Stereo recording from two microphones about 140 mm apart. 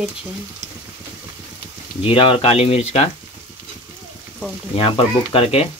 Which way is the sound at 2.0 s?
40° left (ahead or behind).